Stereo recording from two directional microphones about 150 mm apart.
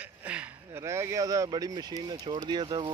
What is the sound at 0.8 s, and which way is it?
Speech, 20° right (ahead or behind).